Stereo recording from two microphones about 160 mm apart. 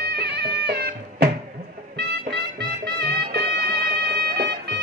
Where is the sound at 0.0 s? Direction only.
90° right.